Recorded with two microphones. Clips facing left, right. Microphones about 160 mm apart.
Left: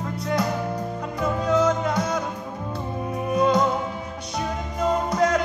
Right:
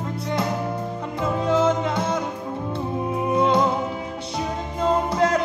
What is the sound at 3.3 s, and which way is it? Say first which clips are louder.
Music: even; 25° right (ahead or behind).